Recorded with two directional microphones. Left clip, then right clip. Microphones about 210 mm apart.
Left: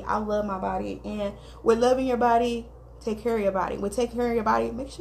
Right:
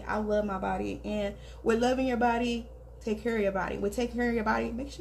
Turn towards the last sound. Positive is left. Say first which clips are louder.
# left 6 dB
turn(degrees=10)  # may be behind; listen again after turning